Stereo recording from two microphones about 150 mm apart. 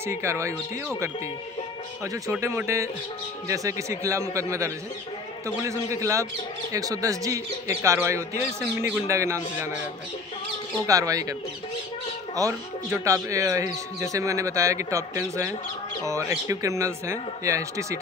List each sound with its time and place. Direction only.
0.0 s speech: 20° right (ahead or behind)
2.4 s speech: 20° right (ahead or behind)
10.9 s speech: 20° right (ahead or behind)
12.4 s speech: 20° right (ahead or behind)